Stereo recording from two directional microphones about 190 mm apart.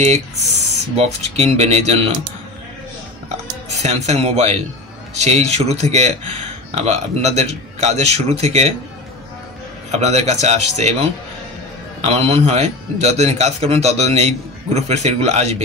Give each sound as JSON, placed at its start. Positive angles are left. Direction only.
{"t": 0.9, "sound": "a man's voice", "side_deg": -35}
{"t": 3.7, "sound": "a man's voice", "side_deg": -35}
{"t": 9.8, "sound": "a man's voice", "side_deg": -35}